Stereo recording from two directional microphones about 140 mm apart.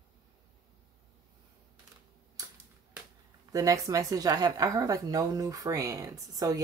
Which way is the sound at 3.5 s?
25° right (ahead or behind).